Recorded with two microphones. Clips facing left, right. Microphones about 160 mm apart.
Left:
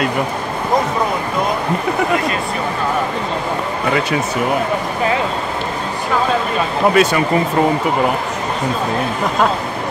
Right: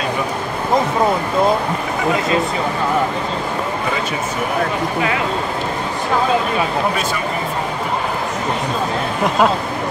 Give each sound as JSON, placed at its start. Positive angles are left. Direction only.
{"t": 7.0, "sound": "speech", "side_deg": 75}